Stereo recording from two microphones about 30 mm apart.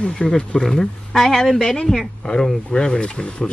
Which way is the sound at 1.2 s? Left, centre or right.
Centre.